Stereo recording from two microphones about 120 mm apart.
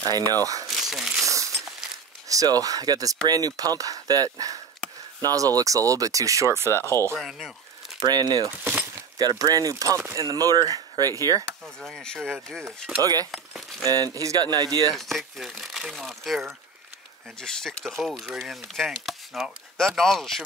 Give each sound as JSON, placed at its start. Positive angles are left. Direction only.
{"t": 0.1, "sound": "speech", "side_deg": -30}
{"t": 0.7, "sound": "crumpling", "side_deg": 0}
{"t": 1.2, "sound": "crumpling", "side_deg": -25}
{"t": 2.2, "sound": "speech", "side_deg": -30}
{"t": 6.8, "sound": "speech", "side_deg": 20}
{"t": 7.2, "sound": "speech", "side_deg": -5}
{"t": 8.1, "sound": "speech", "side_deg": -35}
{"t": 8.5, "sound": "speech", "side_deg": -15}
{"t": 9.2, "sound": "speech", "side_deg": -35}
{"t": 11.6, "sound": "speech", "side_deg": 5}
{"t": 13.0, "sound": "speech", "side_deg": -30}
{"t": 13.3, "sound": "speech", "side_deg": 0}
{"t": 13.8, "sound": "speech", "side_deg": -30}
{"t": 15.0, "sound": "speech", "side_deg": 0}